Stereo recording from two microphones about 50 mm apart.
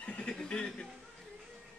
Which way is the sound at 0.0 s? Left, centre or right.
Left.